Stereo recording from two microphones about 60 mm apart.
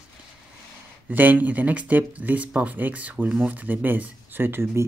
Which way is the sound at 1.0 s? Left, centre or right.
Right.